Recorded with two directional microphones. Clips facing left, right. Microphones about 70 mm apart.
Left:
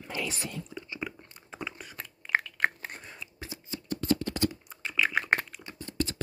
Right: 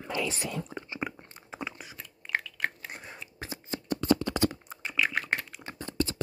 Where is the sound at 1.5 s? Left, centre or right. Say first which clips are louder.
Right 1 dB; centre.